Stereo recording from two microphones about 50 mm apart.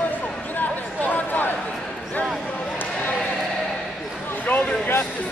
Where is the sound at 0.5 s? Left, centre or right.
Left.